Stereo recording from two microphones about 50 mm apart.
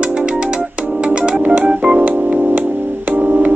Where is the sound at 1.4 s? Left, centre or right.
Right.